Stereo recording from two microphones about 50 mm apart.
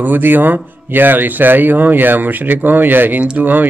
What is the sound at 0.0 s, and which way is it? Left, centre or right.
Speech, right.